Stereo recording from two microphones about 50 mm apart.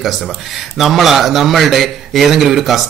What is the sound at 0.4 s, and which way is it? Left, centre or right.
Speech, centre.